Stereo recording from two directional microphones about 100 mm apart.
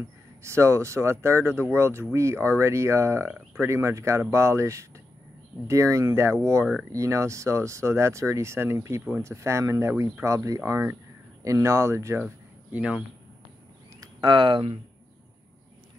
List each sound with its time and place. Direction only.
0.4 s speech: 30° right (ahead or behind)
12.7 s speech: 10° right (ahead or behind)
14.2 s speech: 55° right (ahead or behind)